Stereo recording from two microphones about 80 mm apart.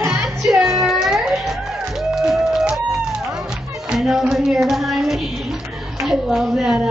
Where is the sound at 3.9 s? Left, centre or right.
Centre.